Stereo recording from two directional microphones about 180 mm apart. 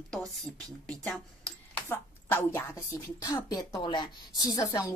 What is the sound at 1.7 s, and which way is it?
A woman's voice, 10° left (ahead or behind).